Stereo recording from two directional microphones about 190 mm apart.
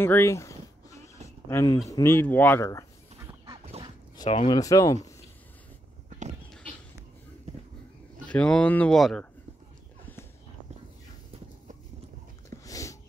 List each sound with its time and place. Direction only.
0.0 s speech: 15° left (ahead or behind)
3.6 s a sound: 30° right (ahead or behind)
4.2 s speech: 25° left (ahead or behind)
6.0 s dog: 40° right (ahead or behind)
8.3 s speech: 5° left (ahead or behind)
12.6 s a sound: 15° left (ahead or behind)